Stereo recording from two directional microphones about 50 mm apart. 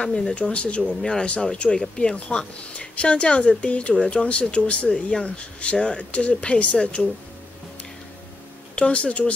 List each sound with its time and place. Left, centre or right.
0.0 s speech: centre
8.7 s speech: left